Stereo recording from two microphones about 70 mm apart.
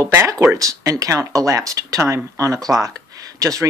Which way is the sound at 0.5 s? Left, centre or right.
Right.